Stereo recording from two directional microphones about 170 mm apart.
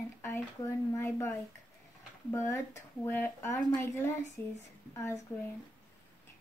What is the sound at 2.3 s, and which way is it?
Speech, 15° left (ahead or behind).